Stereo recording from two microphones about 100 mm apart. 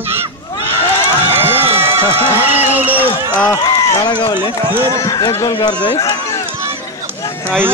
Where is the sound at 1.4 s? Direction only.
20° right (ahead or behind).